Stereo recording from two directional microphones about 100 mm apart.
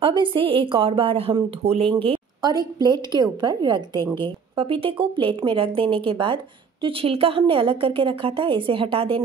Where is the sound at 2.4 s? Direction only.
40° right (ahead or behind).